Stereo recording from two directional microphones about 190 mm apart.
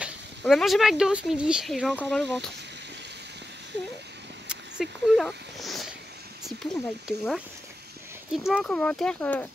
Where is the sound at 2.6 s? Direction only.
65° right (ahead or behind).